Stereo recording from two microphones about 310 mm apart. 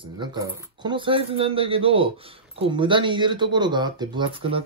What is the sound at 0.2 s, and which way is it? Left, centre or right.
Speech, centre.